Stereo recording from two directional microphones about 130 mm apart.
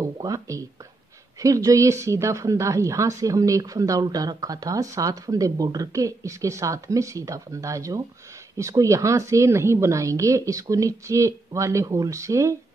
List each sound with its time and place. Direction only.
0.0 s a woman's voice: 25° right (ahead or behind)